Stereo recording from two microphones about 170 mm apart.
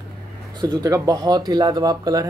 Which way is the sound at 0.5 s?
25° right (ahead or behind).